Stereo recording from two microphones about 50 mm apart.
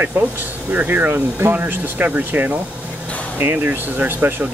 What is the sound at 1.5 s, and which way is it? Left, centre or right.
Speech, right.